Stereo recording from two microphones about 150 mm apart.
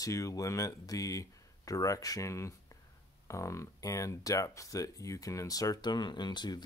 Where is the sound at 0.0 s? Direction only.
20° left (ahead or behind).